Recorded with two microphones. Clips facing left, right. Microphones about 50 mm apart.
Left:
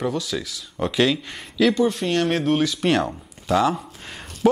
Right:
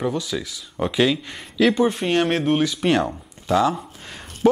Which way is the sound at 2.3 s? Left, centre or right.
Centre.